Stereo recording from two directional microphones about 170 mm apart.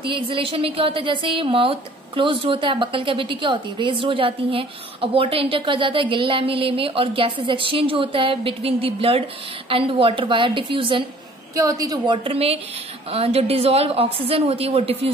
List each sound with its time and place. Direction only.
0.0 s a woman's voice: 30° right (ahead or behind)
11.5 s a woman's voice: 20° right (ahead or behind)
12.3 s a woman's voice: 35° right (ahead or behind)